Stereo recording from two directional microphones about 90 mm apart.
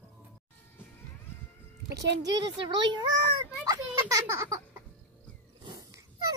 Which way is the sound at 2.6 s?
55° right (ahead or behind).